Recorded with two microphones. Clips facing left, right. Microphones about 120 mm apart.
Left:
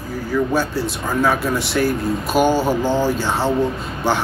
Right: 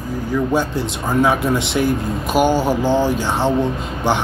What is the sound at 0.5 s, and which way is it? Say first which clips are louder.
Speech: right 1 dB; 20° right (ahead or behind).